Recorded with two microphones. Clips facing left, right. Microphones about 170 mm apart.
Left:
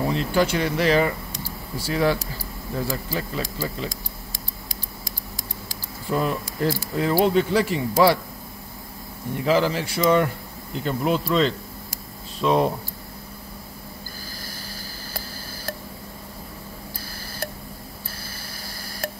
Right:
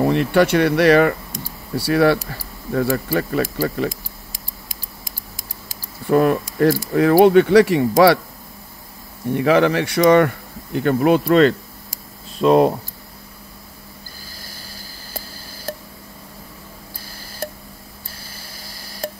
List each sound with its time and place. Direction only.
0.0 s speech: 65° right (ahead or behind)
6.0 s speech: 60° right (ahead or behind)
9.3 s speech: 70° right (ahead or behind)
12.4 s speech: 45° right (ahead or behind)